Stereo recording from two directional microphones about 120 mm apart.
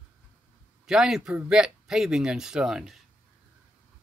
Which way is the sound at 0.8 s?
5° right (ahead or behind).